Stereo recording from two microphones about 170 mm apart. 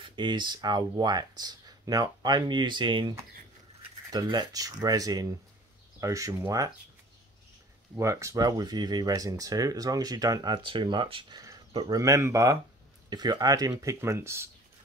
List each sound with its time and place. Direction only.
0.0 s speech: 30° right (ahead or behind)
7.9 s speech: 15° right (ahead or behind)
11.9 s speech: 20° right (ahead or behind)